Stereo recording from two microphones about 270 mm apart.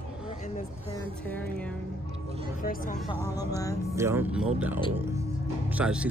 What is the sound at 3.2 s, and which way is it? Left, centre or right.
Speech, centre.